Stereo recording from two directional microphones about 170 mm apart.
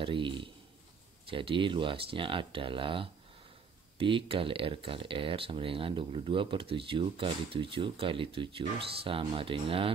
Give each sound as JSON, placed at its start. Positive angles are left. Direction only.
{"t": 0.0, "sound": "a man's voice", "side_deg": -30}